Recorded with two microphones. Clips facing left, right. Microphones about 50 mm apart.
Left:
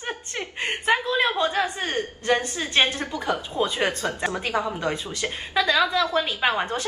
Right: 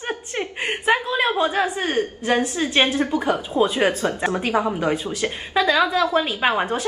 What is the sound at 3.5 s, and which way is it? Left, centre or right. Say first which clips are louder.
A woman's voice: right 7 dB; centre.